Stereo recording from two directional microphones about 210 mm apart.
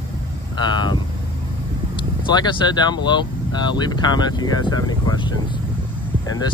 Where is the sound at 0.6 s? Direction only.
20° left (ahead or behind).